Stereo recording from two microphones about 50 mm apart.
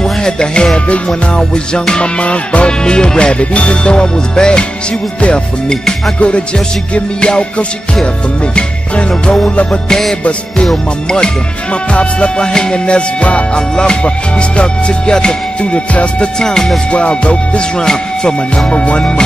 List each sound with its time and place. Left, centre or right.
0.0 s music: centre
2.8 s music: centre
16.3 s music: centre
16.9 s music: left